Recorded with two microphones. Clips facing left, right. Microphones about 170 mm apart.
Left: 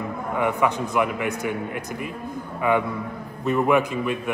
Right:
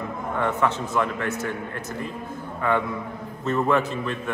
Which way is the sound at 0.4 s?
15° left (ahead or behind).